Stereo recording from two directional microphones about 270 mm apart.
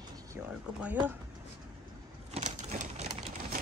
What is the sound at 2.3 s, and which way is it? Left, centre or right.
Typewriter, right.